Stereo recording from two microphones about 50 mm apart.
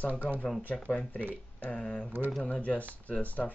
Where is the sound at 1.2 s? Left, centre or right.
Right.